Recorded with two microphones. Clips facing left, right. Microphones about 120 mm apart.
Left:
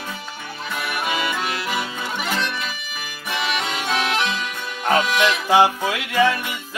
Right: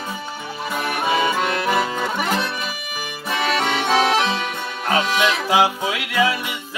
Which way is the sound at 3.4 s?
40° right (ahead or behind).